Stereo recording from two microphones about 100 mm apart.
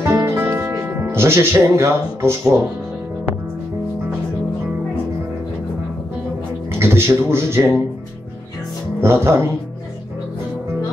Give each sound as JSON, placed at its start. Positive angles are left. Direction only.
{"t": 0.0, "sound": "music", "side_deg": -30}
{"t": 6.8, "sound": "a man's voice", "side_deg": -25}
{"t": 9.0, "sound": "a man's voice", "side_deg": -25}